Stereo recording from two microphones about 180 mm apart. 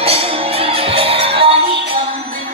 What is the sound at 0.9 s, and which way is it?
Music, 30° right (ahead or behind).